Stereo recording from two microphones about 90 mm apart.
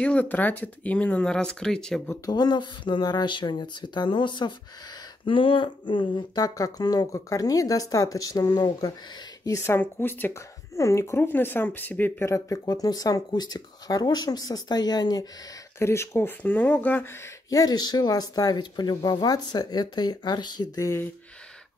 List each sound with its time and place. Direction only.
0.0 s speech: 15° left (ahead or behind)
2.2 s speech: 50° left (ahead or behind)
5.2 s speech: 75° left (ahead or behind); by 8.9 s 50° left (ahead or behind)
9.6 s speech: 25° left (ahead or behind)
12.3 s speech: 35° left (ahead or behind)
15.8 s speech: 30° left (ahead or behind)
17.5 s speech: 45° left (ahead or behind)
20.8 s speech: 30° left (ahead or behind)